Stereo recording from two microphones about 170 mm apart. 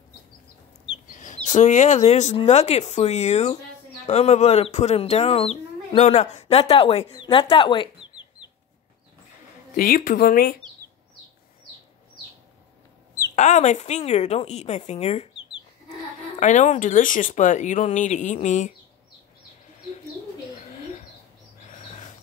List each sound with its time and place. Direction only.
1.0 s a sound: 50° left (ahead or behind)
2.0 s speech: 40° left (ahead or behind)
9.7 s speech: 55° left (ahead or behind)
13.4 s speech: 45° left (ahead or behind)
16.3 s speech: 45° left (ahead or behind)
20.6 s bird: 40° left (ahead or behind)